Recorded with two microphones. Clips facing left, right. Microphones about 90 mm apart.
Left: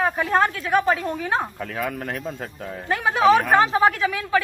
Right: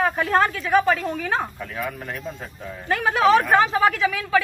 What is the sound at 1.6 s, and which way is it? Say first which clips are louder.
Speech: left 2 dB; 55° left (ahead or behind).